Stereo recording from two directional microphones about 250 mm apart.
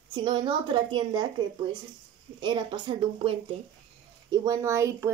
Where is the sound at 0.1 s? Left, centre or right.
Centre.